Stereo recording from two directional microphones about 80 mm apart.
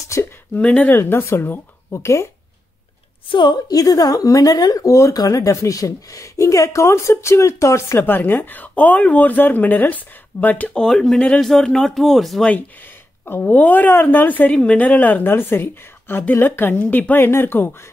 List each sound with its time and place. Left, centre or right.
0.6 s speech: centre
0.9 s a woman's voice: left
3.3 s a woman's voice: left
8.0 s a woman's voice: left
10.8 s speech: centre
13.2 s a woman's voice: left